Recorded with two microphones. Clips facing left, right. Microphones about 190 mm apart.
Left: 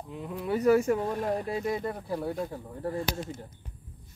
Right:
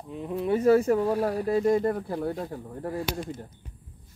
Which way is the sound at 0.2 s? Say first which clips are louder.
Right 4 dB; 25° right (ahead or behind).